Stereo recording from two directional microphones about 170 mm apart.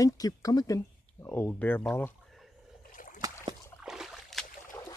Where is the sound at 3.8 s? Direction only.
Centre (ahead or behind).